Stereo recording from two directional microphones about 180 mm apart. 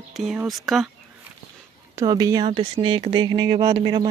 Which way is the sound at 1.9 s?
20° right (ahead or behind).